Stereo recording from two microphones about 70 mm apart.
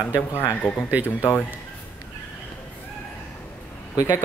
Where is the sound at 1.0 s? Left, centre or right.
Left.